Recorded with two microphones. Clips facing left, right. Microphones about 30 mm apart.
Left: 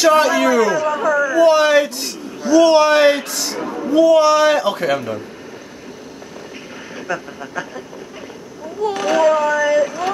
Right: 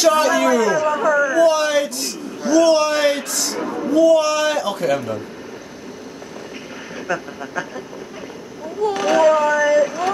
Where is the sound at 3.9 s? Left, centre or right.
Left.